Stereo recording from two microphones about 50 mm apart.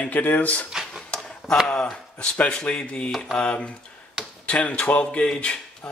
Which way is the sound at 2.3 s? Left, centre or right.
Left.